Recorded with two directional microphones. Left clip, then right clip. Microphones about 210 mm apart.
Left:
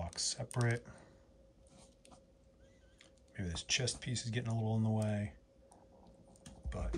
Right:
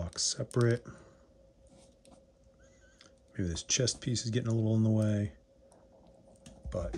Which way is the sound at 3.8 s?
30° right (ahead or behind).